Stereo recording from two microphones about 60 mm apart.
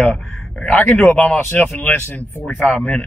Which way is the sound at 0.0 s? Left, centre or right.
Left.